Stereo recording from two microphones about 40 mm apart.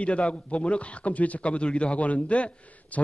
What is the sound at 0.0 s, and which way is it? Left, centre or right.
A man's voice, left.